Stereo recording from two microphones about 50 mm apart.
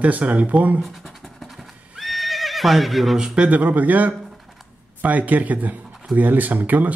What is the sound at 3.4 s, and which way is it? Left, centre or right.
Speech, right.